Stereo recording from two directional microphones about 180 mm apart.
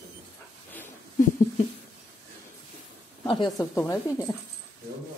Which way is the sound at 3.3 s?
25° left (ahead or behind).